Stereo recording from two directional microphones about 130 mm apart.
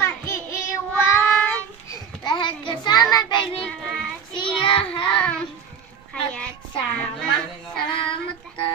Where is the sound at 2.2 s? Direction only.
35° left (ahead or behind).